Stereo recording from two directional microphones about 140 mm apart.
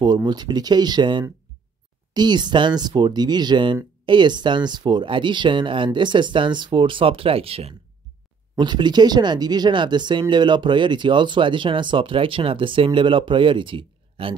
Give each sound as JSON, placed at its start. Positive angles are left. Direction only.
{"t": 0.0, "sound": "speech", "side_deg": -30}
{"t": 8.5, "sound": "speech", "side_deg": -30}